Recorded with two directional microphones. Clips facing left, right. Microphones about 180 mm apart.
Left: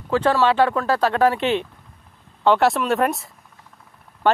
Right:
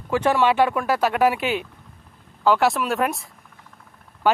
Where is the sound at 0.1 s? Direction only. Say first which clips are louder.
Left 1 dB; 15° right (ahead or behind).